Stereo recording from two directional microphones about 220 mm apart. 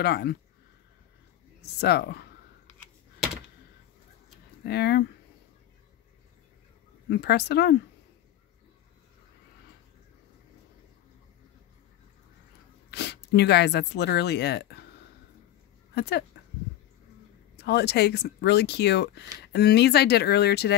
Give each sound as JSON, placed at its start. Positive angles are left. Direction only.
{"t": 0.0, "sound": "speech", "side_deg": 50}
{"t": 1.6, "sound": "speech", "side_deg": 50}
{"t": 4.6, "sound": "speech", "side_deg": 45}
{"t": 7.1, "sound": "speech", "side_deg": 50}
{"t": 12.9, "sound": "speech", "side_deg": 50}
{"t": 15.9, "sound": "speech", "side_deg": 50}
{"t": 17.6, "sound": "speech", "side_deg": 45}